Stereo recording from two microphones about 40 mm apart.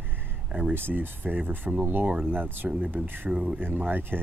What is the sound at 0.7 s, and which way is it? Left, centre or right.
Speech, right.